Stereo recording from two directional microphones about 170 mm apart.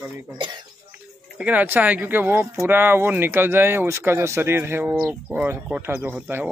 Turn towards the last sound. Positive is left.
turn(degrees=-10)  # may be behind; listen again after turning